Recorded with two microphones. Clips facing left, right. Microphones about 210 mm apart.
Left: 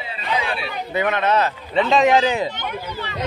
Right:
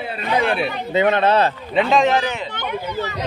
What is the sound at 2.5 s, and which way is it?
Speech, 45° right (ahead or behind).